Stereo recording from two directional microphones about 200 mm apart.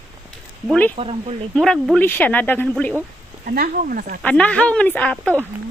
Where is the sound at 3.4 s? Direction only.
45° right (ahead or behind).